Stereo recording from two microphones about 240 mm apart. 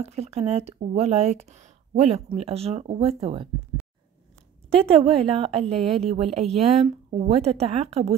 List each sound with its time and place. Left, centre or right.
0.0 s speech: right
4.6 s speech: right